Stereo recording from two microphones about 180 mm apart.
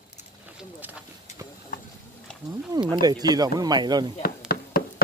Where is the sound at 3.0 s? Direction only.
20° right (ahead or behind).